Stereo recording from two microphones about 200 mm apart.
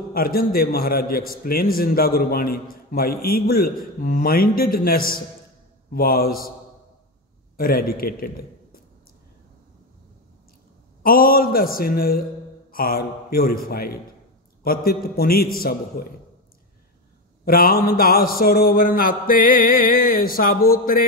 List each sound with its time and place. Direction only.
0.1 s a man's voice: 50° left (ahead or behind)
7.5 s a man's voice: 45° left (ahead or behind)
11.0 s a man's voice: 45° left (ahead or behind)
17.5 s a man's voice: 45° left (ahead or behind)